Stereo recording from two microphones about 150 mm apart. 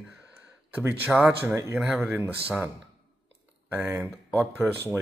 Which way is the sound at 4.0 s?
10° right (ahead or behind).